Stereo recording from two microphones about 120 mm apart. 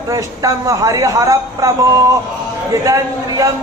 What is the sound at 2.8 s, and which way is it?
Speech, 25° right (ahead or behind).